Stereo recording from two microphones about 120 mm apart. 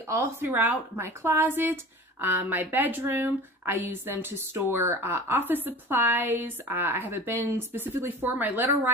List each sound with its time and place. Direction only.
0.1 s speech: 20° right (ahead or behind)